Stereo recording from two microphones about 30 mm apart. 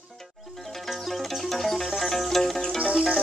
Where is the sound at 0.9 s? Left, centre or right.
Centre.